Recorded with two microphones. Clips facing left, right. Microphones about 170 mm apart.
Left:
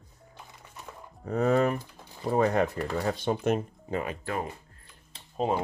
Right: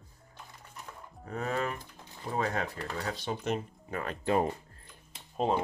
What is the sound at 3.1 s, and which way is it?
Speech, 55° left (ahead or behind).